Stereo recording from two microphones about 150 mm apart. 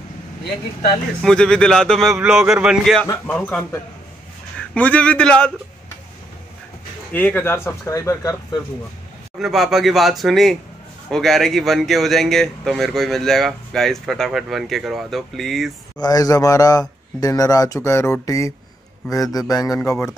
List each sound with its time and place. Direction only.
1.2 s a man's voice: 5° left (ahead or behind)
7.1 s speech: 10° left (ahead or behind)
9.4 s speech: centre (ahead or behind)
16.0 s speech: 25° left (ahead or behind)